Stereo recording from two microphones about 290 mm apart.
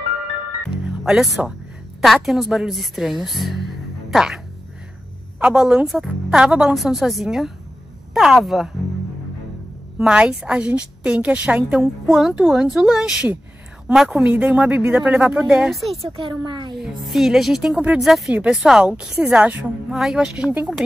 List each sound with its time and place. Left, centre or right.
1.0 s a woman's voice: centre
5.4 s a woman's voice: centre
9.9 s a woman's voice: centre
16.2 s speech: centre
16.7 s a woman's voice: centre